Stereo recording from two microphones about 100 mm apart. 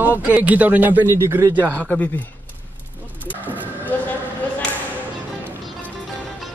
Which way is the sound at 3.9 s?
20° left (ahead or behind).